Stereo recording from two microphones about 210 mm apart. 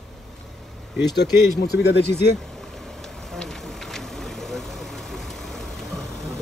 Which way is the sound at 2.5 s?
Centre (ahead or behind).